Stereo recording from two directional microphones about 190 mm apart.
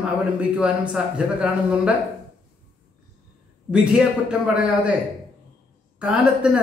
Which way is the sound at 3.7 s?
5° right (ahead or behind).